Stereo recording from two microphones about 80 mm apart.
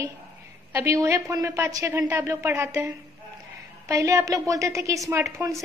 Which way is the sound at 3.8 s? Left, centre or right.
Right.